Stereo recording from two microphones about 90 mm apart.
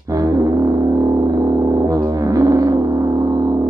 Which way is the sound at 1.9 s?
40° right (ahead or behind).